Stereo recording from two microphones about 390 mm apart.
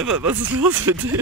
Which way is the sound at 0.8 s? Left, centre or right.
Centre.